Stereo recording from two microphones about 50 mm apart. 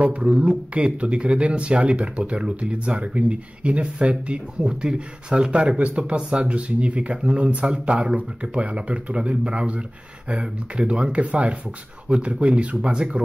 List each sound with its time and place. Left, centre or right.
0.0 s speech: right